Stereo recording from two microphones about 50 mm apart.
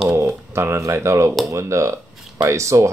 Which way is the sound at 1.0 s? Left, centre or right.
Right.